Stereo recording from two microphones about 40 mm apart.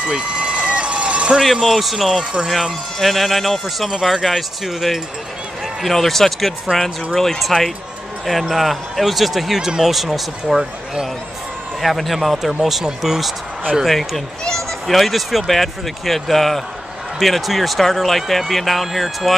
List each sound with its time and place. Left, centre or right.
0.0 s vehicle: right
1.4 s speech: centre
2.0 s speech: centre
3.0 s speech: centre
5.8 s speech: centre
13.8 s speech: centre